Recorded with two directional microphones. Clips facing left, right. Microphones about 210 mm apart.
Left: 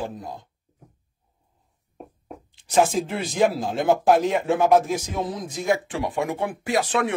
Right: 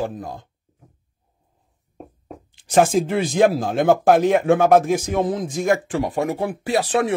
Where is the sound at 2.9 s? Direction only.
65° right (ahead or behind).